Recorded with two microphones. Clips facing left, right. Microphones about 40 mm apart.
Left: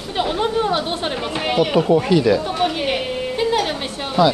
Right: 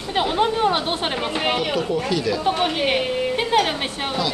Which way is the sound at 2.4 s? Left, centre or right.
Centre.